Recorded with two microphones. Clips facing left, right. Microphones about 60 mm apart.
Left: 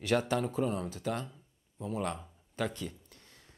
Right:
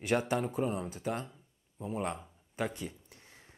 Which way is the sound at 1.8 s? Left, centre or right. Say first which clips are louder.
Even; centre.